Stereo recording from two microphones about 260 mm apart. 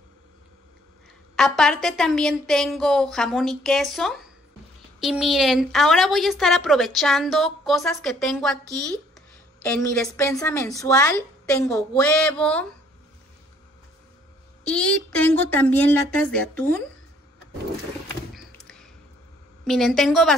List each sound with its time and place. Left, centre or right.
1.3 s a woman's voice: centre
14.7 s a woman's voice: centre
18.3 s a sound: centre
19.6 s a woman's voice: centre